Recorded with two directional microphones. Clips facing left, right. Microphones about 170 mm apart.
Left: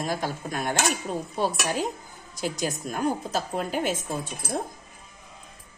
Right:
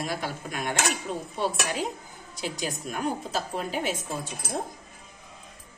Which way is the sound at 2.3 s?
40° left (ahead or behind).